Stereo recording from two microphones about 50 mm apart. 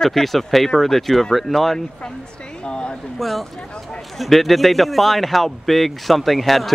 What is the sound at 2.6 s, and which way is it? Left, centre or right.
Speech, centre.